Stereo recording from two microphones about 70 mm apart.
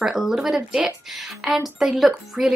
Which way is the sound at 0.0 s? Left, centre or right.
Centre.